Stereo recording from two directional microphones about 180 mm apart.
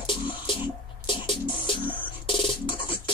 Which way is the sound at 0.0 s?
25° left (ahead or behind).